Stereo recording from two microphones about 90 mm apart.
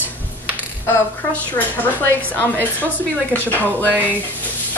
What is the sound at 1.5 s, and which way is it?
Speech, 20° left (ahead or behind).